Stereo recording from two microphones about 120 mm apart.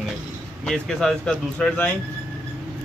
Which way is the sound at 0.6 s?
5° left (ahead or behind).